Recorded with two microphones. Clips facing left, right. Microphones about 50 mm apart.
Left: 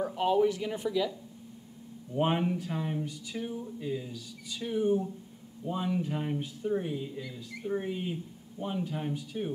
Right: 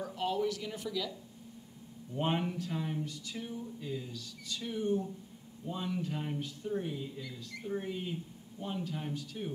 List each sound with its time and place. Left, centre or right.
0.0 s speech: left
2.1 s speech: centre